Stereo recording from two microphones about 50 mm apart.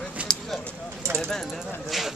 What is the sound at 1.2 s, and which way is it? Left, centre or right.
Speech, centre.